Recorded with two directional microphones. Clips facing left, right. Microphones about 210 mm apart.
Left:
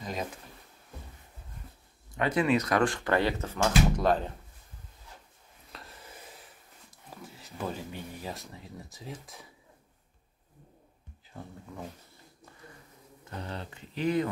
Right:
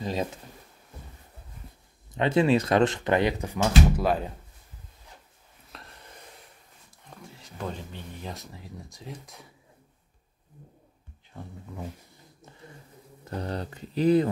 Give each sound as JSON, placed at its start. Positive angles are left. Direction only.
{"t": 0.0, "sound": "speech", "side_deg": -30}
{"t": 2.1, "sound": "speech", "side_deg": -25}
{"t": 5.7, "sound": "a sound", "side_deg": 0}
{"t": 7.1, "sound": "speech", "side_deg": 5}
{"t": 11.3, "sound": "speech", "side_deg": -5}
{"t": 13.2, "sound": "speech", "side_deg": -40}